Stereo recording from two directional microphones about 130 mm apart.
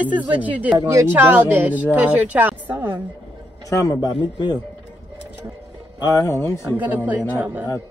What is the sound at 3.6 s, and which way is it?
Speech, 25° left (ahead or behind).